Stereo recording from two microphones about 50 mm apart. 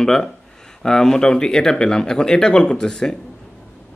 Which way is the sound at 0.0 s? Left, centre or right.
Centre.